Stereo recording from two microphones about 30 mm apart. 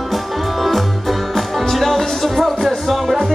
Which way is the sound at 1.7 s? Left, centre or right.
Centre.